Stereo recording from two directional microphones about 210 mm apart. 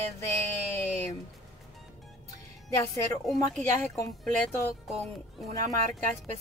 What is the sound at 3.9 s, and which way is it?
Speech, 15° left (ahead or behind).